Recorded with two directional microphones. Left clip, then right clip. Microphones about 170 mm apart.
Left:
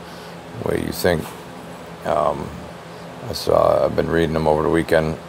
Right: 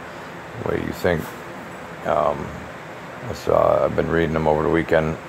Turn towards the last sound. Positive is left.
turn(degrees=10)  # may be behind; listen again after turning